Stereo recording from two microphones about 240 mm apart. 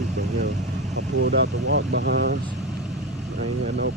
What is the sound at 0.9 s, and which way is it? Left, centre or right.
Speech, right.